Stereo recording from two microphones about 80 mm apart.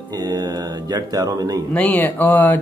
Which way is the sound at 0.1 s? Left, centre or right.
Right.